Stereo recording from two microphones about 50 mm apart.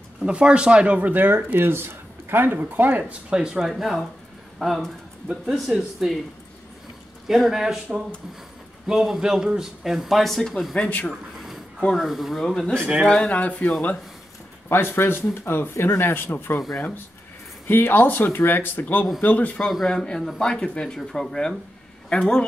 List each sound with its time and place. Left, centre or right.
0.2 s speech: right
1.1 s speech: right
3.0 s speech: right
3.3 s a man's voice: centre
7.2 s a man's voice: centre
11.1 s a sound: centre
11.9 s speech: centre
12.4 s speech: centre
13.3 s speech: left
14.7 s speech: left
17.6 s speech: left
19.6 s speech: centre
20.3 s speech: centre